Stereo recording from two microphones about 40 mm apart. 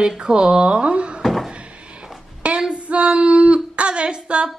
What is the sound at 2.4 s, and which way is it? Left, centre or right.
Female singing, right.